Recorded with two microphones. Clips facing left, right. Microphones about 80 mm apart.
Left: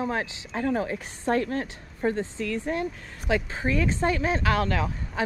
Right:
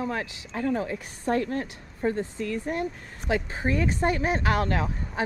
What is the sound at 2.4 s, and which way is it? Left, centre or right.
Speech, left.